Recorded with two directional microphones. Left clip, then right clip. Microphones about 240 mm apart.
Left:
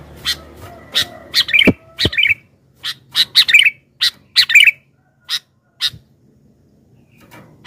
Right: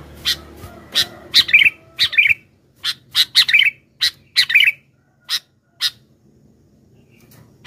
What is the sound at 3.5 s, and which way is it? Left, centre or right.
Bird, centre.